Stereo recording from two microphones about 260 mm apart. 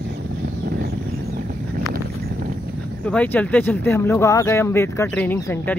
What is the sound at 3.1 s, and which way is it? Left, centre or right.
Speech, centre.